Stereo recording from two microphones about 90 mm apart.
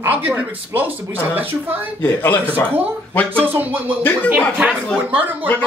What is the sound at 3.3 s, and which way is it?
Speech, 20° right (ahead or behind).